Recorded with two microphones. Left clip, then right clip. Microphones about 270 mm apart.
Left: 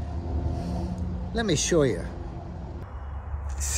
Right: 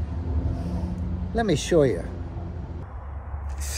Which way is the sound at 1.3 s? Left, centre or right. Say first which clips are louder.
Right 3 dB; centre.